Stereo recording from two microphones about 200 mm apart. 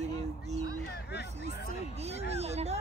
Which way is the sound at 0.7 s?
50° left (ahead or behind).